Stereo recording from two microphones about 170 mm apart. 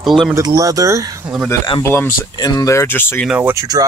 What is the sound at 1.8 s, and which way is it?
Speech, 15° left (ahead or behind).